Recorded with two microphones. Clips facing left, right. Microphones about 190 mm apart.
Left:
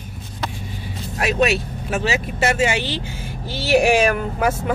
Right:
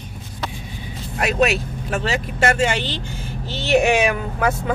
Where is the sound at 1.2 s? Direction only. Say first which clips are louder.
Even; centre (ahead or behind).